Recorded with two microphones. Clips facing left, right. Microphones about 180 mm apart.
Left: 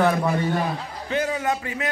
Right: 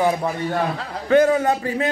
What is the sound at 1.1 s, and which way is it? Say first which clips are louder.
Speech: right 10 dB; 50° right (ahead or behind).